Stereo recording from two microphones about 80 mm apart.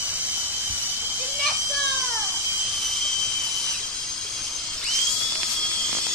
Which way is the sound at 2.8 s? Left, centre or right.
Centre.